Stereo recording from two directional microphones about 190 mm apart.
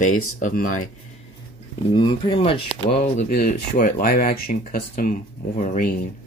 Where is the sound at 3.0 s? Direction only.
50° left (ahead or behind).